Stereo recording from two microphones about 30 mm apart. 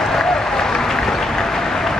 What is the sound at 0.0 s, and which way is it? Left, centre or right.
Applause, centre.